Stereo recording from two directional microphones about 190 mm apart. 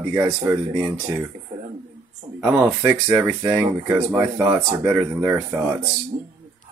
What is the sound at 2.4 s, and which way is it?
Speech, 15° right (ahead or behind).